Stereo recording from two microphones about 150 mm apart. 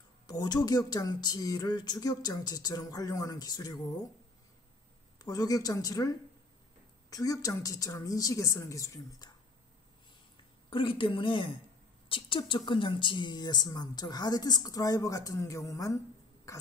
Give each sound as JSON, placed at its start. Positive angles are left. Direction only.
{"t": 0.3, "sound": "speech", "side_deg": 25}
{"t": 5.2, "sound": "speech", "side_deg": 25}
{"t": 10.7, "sound": "speech", "side_deg": 35}